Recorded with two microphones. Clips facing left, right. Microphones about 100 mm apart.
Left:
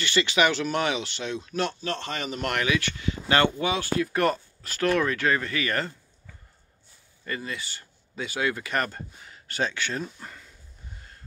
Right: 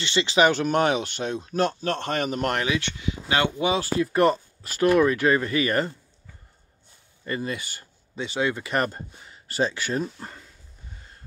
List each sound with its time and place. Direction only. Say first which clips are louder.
0.0 s speech: right 3 dB; 25° right (ahead or behind)
0.5 s speech: right 5 dB; 45° right (ahead or behind); by 3.0 s 25° right (ahead or behind)
3.0 s speech: left 3 dB; 10° right (ahead or behind)
3.6 s speech: right 3 dB; 30° right (ahead or behind)
4.7 s speech: right 5 dB; 10° right (ahead or behind); by 5.9 s 25° right (ahead or behind)
7.4 s speech: right 4 dB; 50° right (ahead or behind)
8.2 s speech: right 2 dB; 25° right (ahead or behind)